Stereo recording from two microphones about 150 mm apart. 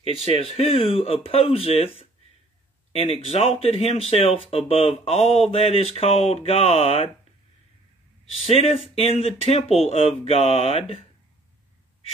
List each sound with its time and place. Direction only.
0.3 s speech: 40° left (ahead or behind)
2.9 s speech: 40° left (ahead or behind)
8.4 s speech: 45° left (ahead or behind)